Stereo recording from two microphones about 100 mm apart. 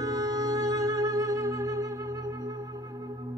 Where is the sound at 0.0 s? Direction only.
35° right (ahead or behind).